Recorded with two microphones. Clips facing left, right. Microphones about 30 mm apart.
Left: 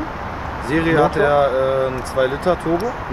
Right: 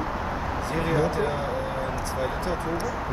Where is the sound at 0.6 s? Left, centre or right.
Left.